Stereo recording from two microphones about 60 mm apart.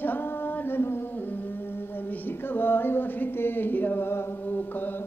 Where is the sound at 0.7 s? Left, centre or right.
Left.